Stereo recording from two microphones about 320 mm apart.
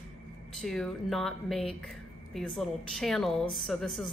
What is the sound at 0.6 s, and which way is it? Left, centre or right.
Speech, centre.